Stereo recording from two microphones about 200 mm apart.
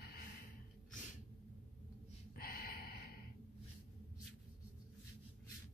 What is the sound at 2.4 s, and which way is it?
Gasp, 50° left (ahead or behind).